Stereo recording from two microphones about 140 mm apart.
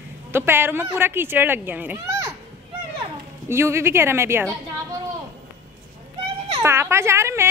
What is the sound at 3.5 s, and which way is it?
A woman's voice, 20° right (ahead or behind).